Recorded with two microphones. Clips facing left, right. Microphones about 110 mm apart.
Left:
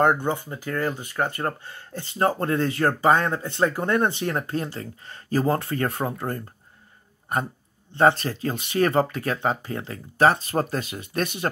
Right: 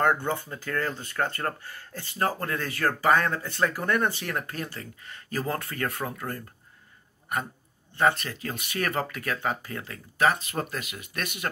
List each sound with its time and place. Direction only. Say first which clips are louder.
0.0 s speech: left 4 dB; 20° left (ahead or behind)
8.0 s speech: left 5 dB; 30° left (ahead or behind)